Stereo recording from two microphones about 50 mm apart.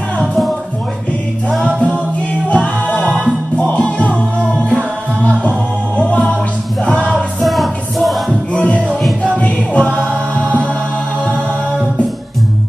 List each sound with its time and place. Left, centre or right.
0.2 s music: centre
2.5 s music: left
6.0 s music: left
7.4 s music: centre
9.8 s music: centre